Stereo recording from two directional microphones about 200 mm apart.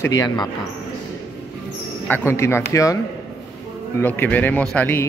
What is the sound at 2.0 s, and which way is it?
Speech, 10° left (ahead or behind).